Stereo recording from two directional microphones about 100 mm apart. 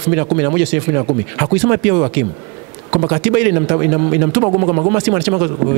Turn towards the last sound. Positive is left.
turn(degrees=-20)  # may be behind; listen again after turning